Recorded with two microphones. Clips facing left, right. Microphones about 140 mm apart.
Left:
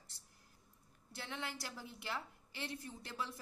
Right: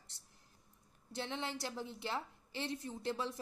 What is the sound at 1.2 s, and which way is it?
A woman's voice, 25° right (ahead or behind).